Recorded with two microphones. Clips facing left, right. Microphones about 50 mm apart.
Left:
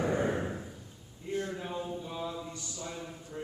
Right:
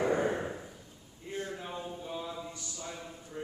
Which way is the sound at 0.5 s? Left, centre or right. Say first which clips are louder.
Left 2 dB; centre.